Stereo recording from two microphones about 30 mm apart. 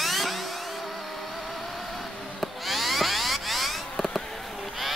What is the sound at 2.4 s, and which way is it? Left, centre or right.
Music, centre.